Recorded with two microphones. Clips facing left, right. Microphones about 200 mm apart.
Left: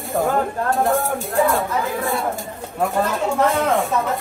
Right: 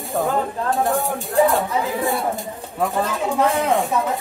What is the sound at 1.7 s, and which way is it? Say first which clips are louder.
Speech: right 1 dB; 15° right (ahead or behind).